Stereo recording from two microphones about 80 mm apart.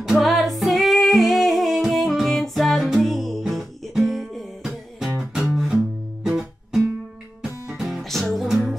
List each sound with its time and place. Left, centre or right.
0.0 s music: centre